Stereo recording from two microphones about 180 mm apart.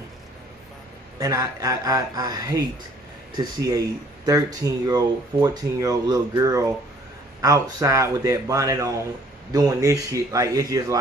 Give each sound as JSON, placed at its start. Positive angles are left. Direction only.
{"t": 1.2, "sound": "speech", "side_deg": -20}